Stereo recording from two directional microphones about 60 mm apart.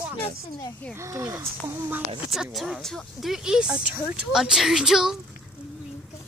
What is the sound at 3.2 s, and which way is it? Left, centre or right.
Speech, centre.